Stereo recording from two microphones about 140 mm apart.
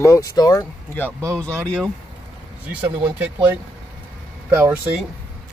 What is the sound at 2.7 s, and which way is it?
Speech, 10° right (ahead or behind).